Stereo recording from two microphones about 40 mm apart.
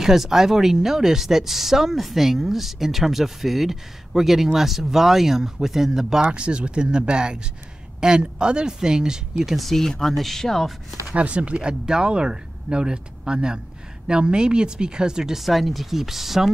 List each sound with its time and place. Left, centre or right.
0.0 s speech: centre
6.3 s speech: right
9.6 s speech: centre
11.1 s speech: right
15.3 s speech: centre